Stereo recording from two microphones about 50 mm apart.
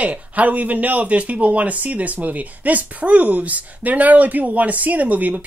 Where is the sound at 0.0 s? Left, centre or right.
Right.